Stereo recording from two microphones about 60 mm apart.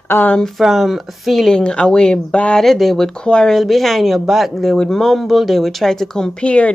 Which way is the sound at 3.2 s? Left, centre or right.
Centre.